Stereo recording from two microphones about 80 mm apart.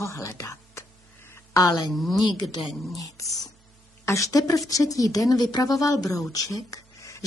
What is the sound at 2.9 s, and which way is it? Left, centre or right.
A woman's voice, left.